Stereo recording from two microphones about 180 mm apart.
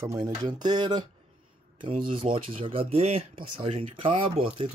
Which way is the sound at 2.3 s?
30° right (ahead or behind).